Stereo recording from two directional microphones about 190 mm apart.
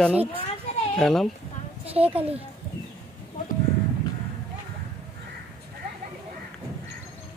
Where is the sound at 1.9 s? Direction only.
30° right (ahead or behind).